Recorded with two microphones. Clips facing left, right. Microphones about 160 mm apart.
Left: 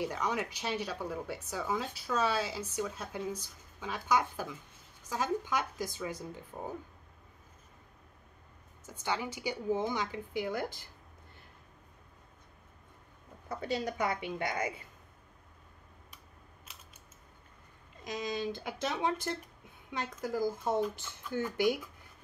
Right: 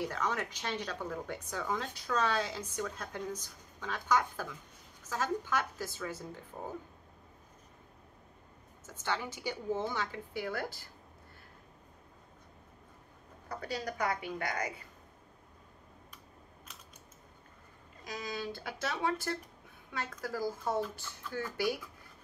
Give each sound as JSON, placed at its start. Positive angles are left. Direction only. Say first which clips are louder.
{"t": 0.0, "sound": "speech", "louder": "left 1 dB", "side_deg": 15}
{"t": 8.8, "sound": "speech", "louder": "left 1 dB", "side_deg": 15}
{"t": 13.5, "sound": "speech", "louder": "left 4 dB", "side_deg": 25}
{"t": 18.0, "sound": "speech", "louder": "left 4 dB", "side_deg": 20}